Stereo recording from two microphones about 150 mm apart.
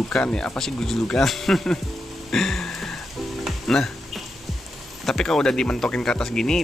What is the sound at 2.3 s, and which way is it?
Music, centre (ahead or behind).